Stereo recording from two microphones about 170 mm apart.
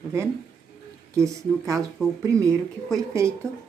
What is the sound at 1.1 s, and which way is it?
Speech, 20° right (ahead or behind).